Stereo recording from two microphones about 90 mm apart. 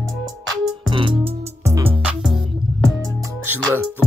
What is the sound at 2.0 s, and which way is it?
Music, 5° right (ahead or behind).